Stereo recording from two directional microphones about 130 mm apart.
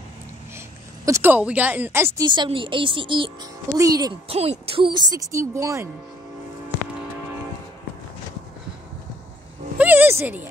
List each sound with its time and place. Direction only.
0.6 s a woman's voice: 20° right (ahead or behind)
2.1 s speech: 35° right (ahead or behind)
3.7 s speech: 25° right (ahead or behind)
4.3 s a sound: 50° right (ahead or behind)
5.1 s speech: 25° right (ahead or behind)
9.8 s a sound: 15° right (ahead or behind)